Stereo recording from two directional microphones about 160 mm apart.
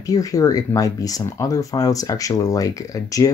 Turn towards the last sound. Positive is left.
turn(degrees=20)  # may be behind; listen again after turning